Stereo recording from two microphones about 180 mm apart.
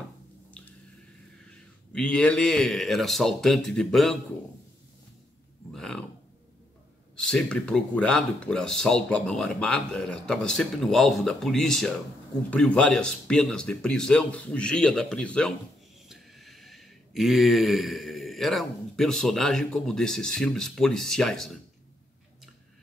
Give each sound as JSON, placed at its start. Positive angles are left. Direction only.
{"t": 0.5, "sound": "squish", "side_deg": 5}
{"t": 1.9, "sound": "speech", "side_deg": 5}
{"t": 5.7, "sound": "a sound", "side_deg": 0}
{"t": 7.2, "sound": "speech", "side_deg": 5}